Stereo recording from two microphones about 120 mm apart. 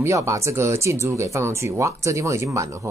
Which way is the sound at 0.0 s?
25° right (ahead or behind).